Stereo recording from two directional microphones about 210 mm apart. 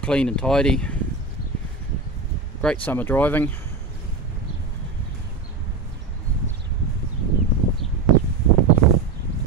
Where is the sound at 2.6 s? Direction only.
5° left (ahead or behind).